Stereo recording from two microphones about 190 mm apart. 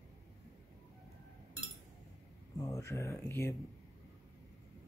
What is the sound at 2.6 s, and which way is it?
Speech, 15° left (ahead or behind).